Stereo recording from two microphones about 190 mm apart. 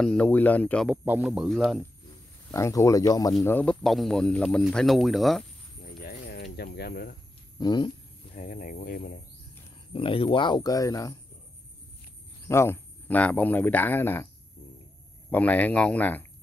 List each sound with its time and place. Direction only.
0.0 s speech: 5° left (ahead or behind)
0.8 s speech: 5° right (ahead or behind)
2.5 s speech: 15° left (ahead or behind)
3.4 s speech: 10° left (ahead or behind)
5.9 s cricket: 50° left (ahead or behind)
7.5 s speech: 20° left (ahead or behind)
8.4 s speech: 45° left (ahead or behind)
9.9 s speech: 30° left (ahead or behind)
12.4 s speech: 15° left (ahead or behind)
15.3 s speech: 10° left (ahead or behind)